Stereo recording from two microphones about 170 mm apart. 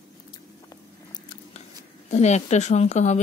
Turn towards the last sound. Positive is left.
turn(degrees=40)  # may be behind; listen again after turning